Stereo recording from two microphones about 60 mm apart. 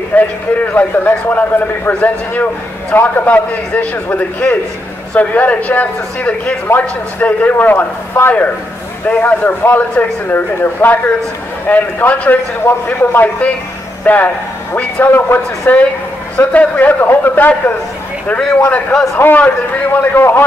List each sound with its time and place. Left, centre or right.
0.1 s a man's voice: left
16.3 s a man's voice: left
19.9 s speech: left